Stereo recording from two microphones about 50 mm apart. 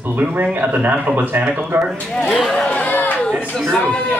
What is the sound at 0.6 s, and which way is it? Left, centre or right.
Speech, right.